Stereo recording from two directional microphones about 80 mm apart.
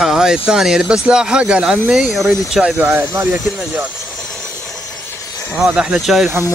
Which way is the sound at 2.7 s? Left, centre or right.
Right.